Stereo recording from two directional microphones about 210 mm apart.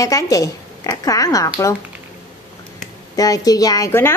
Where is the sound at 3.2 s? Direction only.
15° left (ahead or behind).